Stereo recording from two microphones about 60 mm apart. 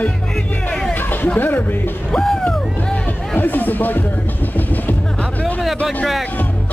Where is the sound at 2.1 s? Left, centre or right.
Centre.